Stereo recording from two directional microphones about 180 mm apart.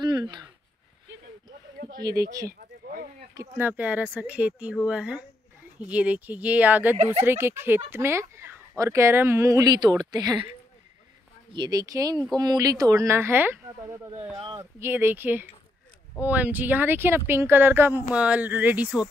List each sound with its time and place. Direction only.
0.0 s a sound: 25° right (ahead or behind)
2.0 s speech: 20° right (ahead or behind)
2.4 s a sound: 55° right (ahead or behind)
3.3 s speech: 10° right (ahead or behind)
11.5 s speech: 20° right (ahead or behind)
14.4 s speech: 25° right (ahead or behind)
14.8 s speech: 15° right (ahead or behind)